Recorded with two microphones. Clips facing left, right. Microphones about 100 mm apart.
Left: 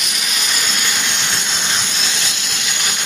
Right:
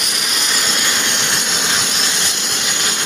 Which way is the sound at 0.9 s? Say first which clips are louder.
Right 2 dB; 70° right (ahead or behind).